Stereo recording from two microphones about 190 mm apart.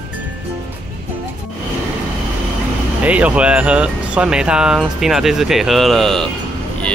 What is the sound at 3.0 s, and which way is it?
Speech, 5° right (ahead or behind).